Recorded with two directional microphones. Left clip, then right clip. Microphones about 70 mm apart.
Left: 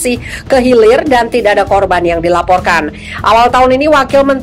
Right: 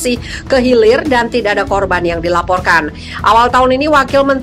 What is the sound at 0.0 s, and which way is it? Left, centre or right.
Speech, left.